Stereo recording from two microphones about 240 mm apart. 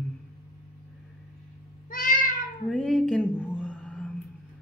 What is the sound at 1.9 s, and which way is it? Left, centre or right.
Cat, left.